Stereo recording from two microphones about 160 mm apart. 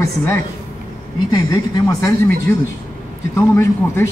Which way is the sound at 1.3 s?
25° left (ahead or behind).